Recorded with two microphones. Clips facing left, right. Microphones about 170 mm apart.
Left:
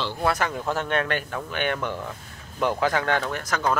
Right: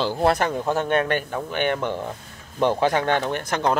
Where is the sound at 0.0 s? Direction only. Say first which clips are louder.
Right 5 dB; 35° right (ahead or behind).